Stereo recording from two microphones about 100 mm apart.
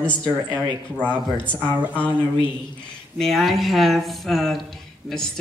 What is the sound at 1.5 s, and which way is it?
Speech, 15° right (ahead or behind).